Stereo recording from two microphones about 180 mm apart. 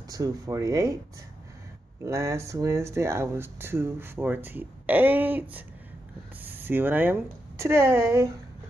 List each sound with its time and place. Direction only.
0.1 s speech: 20° right (ahead or behind)
2.0 s speech: 15° right (ahead or behind)